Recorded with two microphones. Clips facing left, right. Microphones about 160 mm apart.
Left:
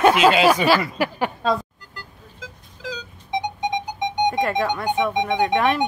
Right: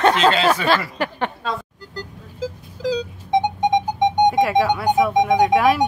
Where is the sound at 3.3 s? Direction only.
50° right (ahead or behind).